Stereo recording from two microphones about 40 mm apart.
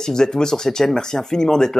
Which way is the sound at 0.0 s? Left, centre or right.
Centre.